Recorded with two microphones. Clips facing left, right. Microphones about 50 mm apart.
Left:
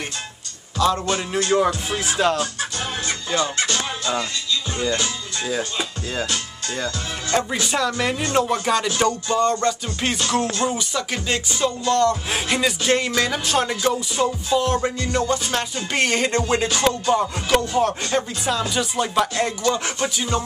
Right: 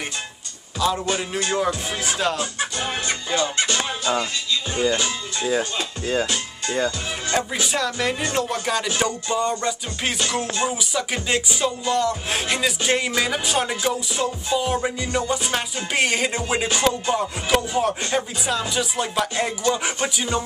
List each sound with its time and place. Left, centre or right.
0.7 s a man's voice: centre
1.9 s music: centre
2.8 s music: right
4.7 s speech: centre
6.3 s music: right
7.6 s music: centre
8.8 s music: centre
19.3 s music: centre